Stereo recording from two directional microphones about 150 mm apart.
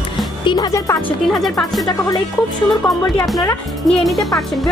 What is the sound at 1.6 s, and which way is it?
Speech, centre (ahead or behind).